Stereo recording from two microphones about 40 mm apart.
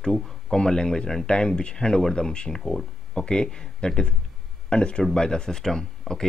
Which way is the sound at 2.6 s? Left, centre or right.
Centre.